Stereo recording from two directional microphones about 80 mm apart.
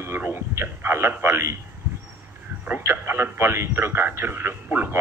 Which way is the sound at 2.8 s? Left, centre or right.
Right.